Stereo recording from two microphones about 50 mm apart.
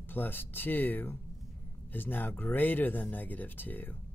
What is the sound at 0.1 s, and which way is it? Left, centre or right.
Speech, left.